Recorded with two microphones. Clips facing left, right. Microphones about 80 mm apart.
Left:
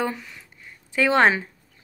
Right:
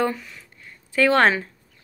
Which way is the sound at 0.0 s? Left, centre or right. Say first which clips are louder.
Right 3 dB; centre.